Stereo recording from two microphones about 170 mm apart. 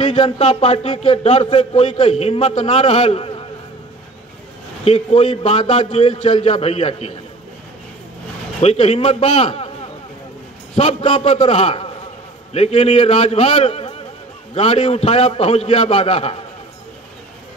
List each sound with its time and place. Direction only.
0.0 s a man's voice: 35° left (ahead or behind)
4.8 s a man's voice: 35° left (ahead or behind)
8.5 s a man's voice: 35° left (ahead or behind)
10.8 s a man's voice: 35° left (ahead or behind)